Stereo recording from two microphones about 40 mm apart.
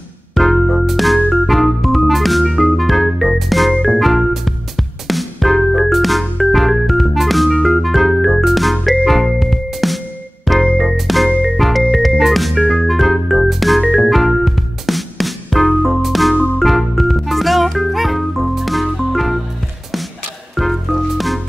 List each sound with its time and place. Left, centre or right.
0.3 s music: centre
0.8 s organ: centre
4.0 s music: centre
6.5 s organ: centre
7.6 s music: centre
20.5 s music: centre